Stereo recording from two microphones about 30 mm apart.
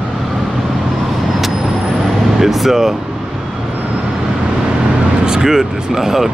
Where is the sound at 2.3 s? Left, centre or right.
Centre.